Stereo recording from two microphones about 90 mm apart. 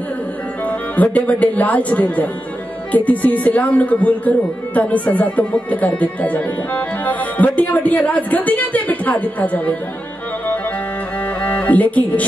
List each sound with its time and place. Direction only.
0.7 s speech: 15° left (ahead or behind)
11.4 s speech: 15° left (ahead or behind)